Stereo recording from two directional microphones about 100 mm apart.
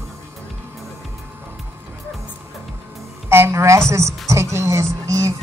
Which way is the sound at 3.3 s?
25° right (ahead or behind).